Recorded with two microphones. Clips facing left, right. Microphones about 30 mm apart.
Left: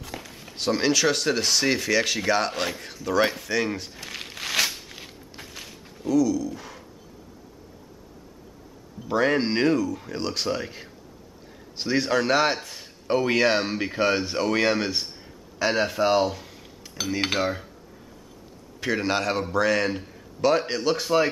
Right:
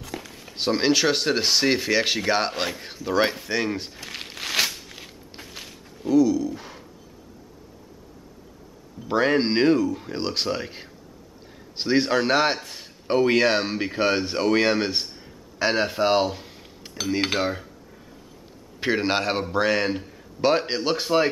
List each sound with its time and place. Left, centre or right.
0.0 s a sound: centre
0.6 s speech: centre
3.9 s a sound: centre
6.0 s speech: right
9.0 s speech: centre
12.6 s a sound: centre
13.0 s speech: centre
16.8 s cutlery: right
17.2 s cutlery: centre
18.8 s speech: right
19.9 s cutlery: centre
20.3 s speech: right